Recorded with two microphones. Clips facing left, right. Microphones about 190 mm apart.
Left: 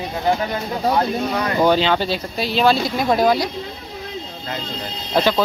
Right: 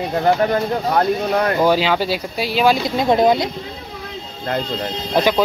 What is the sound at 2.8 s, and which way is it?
Speech, 20° right (ahead or behind).